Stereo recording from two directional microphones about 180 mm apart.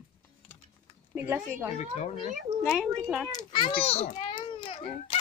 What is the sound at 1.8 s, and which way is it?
Speech, 35° left (ahead or behind).